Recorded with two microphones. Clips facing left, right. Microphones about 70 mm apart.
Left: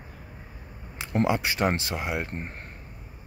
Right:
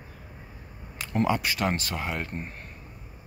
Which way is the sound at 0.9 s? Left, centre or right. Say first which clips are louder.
Left 1 dB; centre.